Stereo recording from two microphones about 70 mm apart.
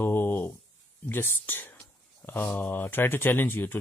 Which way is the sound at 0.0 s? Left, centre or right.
Left.